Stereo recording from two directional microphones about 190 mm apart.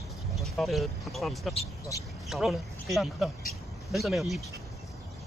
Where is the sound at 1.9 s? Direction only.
15° left (ahead or behind).